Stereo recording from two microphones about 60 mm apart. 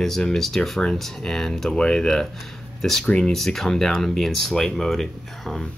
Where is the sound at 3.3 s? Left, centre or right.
Centre.